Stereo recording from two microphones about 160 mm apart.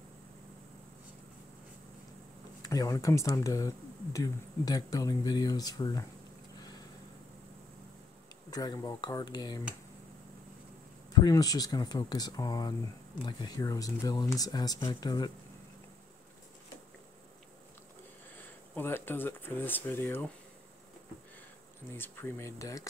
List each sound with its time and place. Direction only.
2.6 s speech: 20° left (ahead or behind)
8.5 s speech: 25° left (ahead or behind)
11.1 s speech: 20° left (ahead or behind)
18.3 s speech: 10° left (ahead or behind)
21.9 s speech: 15° left (ahead or behind)